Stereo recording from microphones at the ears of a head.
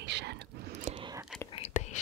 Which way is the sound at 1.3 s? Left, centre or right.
Left.